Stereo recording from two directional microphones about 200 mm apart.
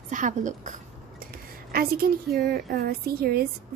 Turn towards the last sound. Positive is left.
turn(degrees=-50)  # may be behind; listen again after turning